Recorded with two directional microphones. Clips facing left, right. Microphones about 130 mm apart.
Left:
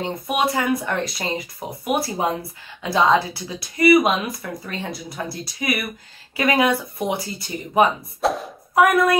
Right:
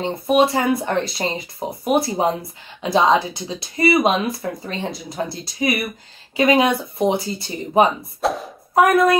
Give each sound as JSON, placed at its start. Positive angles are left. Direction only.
{"t": 0.0, "sound": "speech", "side_deg": -25}
{"t": 8.2, "sound": "a sound", "side_deg": 0}
{"t": 8.7, "sound": "speech", "side_deg": -25}